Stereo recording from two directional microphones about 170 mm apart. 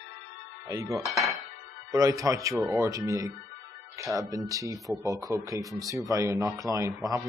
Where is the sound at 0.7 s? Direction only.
15° right (ahead or behind).